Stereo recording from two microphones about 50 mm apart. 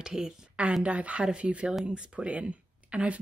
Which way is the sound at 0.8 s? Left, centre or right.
Right.